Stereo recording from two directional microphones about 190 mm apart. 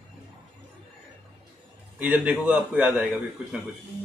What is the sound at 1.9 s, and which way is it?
A man's voice, 10° right (ahead or behind).